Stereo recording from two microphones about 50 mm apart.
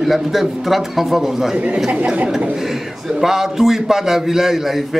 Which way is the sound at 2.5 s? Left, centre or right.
Centre.